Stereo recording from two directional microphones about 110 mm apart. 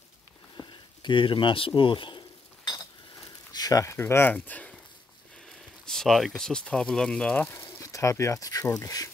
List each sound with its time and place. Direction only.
0.6 s a sound: 45° left (ahead or behind)
3.5 s speech: 35° left (ahead or behind); by 4.7 s 15° left (ahead or behind)
5.9 s speech: 5° left (ahead or behind)
7.6 s speech: 30° left (ahead or behind)